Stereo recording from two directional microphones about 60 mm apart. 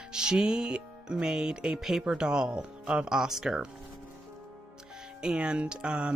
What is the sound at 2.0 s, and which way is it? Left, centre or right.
Speech, centre.